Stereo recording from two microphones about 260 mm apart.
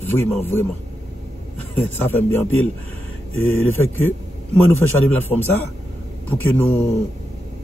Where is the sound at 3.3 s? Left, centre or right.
Left.